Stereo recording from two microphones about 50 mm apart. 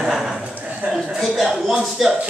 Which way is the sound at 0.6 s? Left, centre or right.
Right.